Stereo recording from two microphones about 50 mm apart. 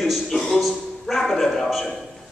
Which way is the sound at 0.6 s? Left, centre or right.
Centre.